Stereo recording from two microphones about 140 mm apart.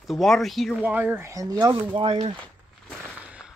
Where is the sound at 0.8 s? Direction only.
10° right (ahead or behind); by 1.7 s 25° right (ahead or behind).